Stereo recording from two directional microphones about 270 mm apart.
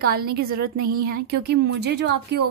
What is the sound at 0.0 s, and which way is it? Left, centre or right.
A woman's voice, right.